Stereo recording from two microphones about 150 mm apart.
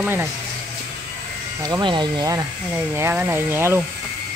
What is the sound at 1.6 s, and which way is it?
Speech, 30° right (ahead or behind).